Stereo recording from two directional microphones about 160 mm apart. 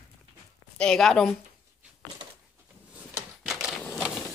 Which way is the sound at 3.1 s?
5° right (ahead or behind).